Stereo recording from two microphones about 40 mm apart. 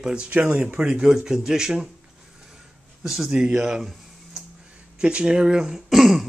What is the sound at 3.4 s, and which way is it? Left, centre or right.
Speech, right.